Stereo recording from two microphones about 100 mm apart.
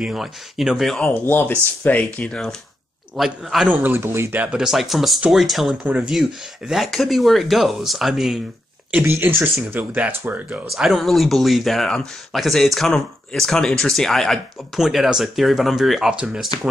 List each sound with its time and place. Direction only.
0.0 s speech: 5° right (ahead or behind)
0.9 s speech: 20° left (ahead or behind)
3.2 s speech: 5° right (ahead or behind)
3.6 s speech: 20° right (ahead or behind)
6.7 s speech: centre (ahead or behind)
8.9 s speech: 20° right (ahead or behind)
10.7 s speech: centre (ahead or behind)